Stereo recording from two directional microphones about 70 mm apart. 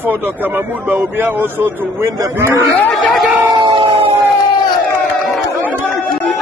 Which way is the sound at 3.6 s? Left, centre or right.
Right.